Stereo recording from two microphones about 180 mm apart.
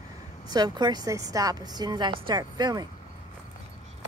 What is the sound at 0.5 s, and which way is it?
A woman's voice, 25° right (ahead or behind).